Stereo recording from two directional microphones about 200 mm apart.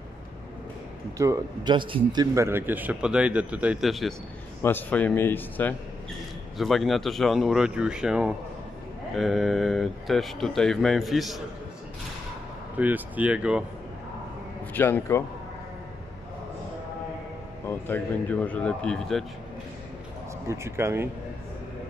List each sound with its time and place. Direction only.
1.1 s speech: 15° right (ahead or behind)
2.3 s a man's voice: 10° right (ahead or behind)
12.7 s speech: 10° right (ahead or behind)
14.7 s a man's voice: 10° left (ahead or behind)
17.6 s a man's voice: 10° left (ahead or behind)
20.4 s speech: 15° right (ahead or behind)